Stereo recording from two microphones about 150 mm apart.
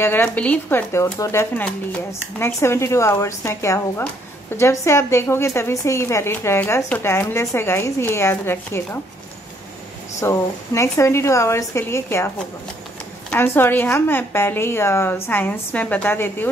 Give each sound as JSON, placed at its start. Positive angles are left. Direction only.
{"t": 0.0, "sound": "a woman's voice", "side_deg": 15}
{"t": 10.2, "sound": "a woman's voice", "side_deg": 20}
{"t": 13.3, "sound": "a woman's voice", "side_deg": 15}